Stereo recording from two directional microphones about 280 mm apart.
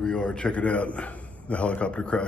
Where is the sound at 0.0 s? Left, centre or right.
Centre.